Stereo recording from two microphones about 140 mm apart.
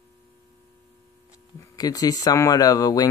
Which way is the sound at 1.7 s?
25° left (ahead or behind).